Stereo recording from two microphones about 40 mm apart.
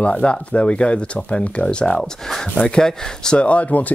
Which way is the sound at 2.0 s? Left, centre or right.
Centre.